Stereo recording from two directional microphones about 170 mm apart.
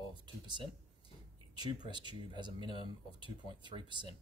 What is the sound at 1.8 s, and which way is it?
Speech, 25° right (ahead or behind).